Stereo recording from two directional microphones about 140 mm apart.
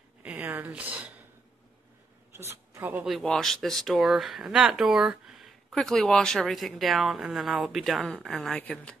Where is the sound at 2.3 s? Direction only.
20° right (ahead or behind).